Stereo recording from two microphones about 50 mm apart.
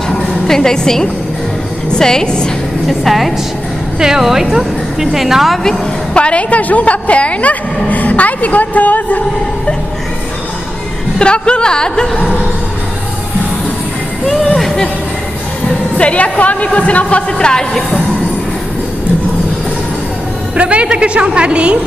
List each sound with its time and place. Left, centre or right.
0.5 s a woman's voice: centre
2.9 s a woman's voice: centre
4.0 s a woman's voice: centre
6.1 s a woman's voice: left
11.1 s a woman's voice: centre
14.2 s a sound: centre
16.0 s a woman's voice: left
20.5 s a woman's voice: right